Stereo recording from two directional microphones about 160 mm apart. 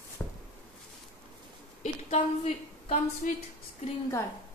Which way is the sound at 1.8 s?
45° left (ahead or behind).